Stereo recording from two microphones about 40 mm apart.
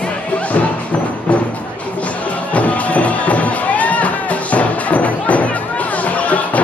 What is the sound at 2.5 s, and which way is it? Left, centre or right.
Music, left.